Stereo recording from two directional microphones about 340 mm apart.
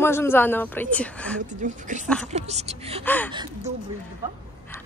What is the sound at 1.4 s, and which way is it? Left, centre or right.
Speech, right.